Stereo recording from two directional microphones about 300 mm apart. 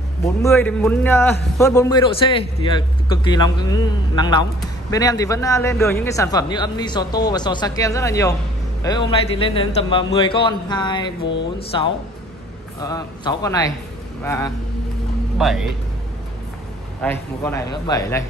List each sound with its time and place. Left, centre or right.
0.2 s a man's voice: centre
17.0 s a man's voice: centre